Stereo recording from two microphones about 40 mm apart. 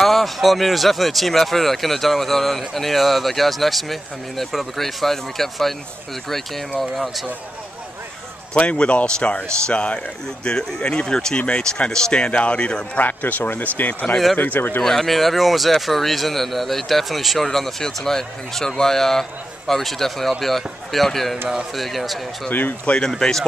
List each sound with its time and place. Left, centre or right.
0.0 s speech: centre
8.5 s speech: left
12.9 s speech: left
14.8 s speech: centre
22.5 s speech: left
23.0 s speech: centre